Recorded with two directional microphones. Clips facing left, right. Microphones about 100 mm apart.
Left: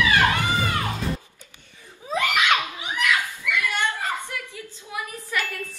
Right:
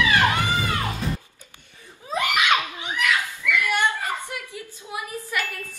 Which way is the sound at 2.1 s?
15° right (ahead or behind).